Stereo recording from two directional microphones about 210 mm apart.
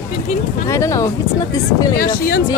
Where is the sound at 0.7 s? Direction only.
15° left (ahead or behind).